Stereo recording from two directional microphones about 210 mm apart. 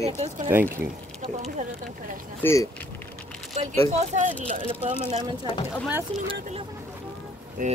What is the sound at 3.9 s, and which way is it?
Speech, 35° right (ahead or behind).